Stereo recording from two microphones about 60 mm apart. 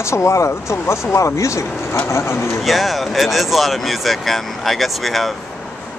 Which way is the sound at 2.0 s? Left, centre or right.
Left.